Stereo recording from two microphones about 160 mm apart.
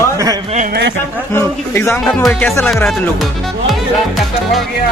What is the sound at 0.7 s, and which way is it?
Speech, 90° right.